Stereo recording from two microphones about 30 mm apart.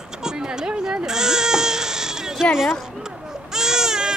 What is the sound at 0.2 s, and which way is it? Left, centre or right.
Baby cry, right.